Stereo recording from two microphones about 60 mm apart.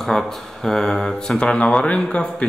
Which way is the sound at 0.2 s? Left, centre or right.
Centre.